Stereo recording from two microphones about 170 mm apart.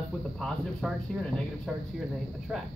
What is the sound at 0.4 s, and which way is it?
Speech, 5° left (ahead or behind).